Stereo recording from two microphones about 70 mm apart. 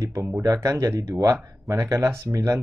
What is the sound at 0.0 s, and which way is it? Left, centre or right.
Speech, right.